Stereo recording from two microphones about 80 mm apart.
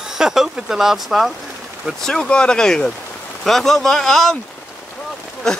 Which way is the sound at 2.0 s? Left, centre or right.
Centre.